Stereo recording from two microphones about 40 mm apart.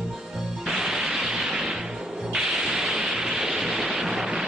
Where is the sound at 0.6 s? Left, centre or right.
Centre.